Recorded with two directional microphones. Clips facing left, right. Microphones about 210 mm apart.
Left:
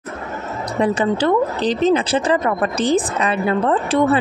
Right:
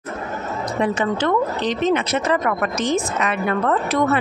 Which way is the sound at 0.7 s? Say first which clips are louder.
Left 4 dB; 35° left (ahead or behind).